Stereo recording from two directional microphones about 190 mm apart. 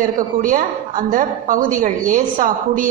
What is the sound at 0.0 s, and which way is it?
A woman's voice, 45° right (ahead or behind).